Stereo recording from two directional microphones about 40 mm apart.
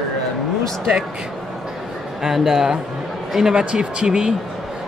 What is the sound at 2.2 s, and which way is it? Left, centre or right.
A man's voice, centre.